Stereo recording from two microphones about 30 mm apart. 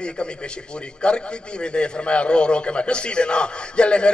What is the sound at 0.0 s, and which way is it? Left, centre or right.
A man's voice, left.